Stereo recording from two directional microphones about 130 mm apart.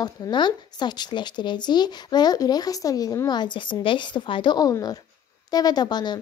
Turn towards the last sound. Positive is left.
turn(degrees=35)  # may be behind; listen again after turning